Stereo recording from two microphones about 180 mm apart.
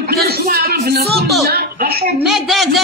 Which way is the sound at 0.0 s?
60° right (ahead or behind).